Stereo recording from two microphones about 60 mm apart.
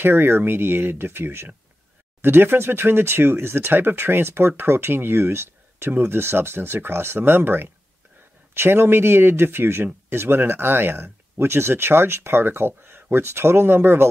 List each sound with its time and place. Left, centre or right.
0.0 s speech: right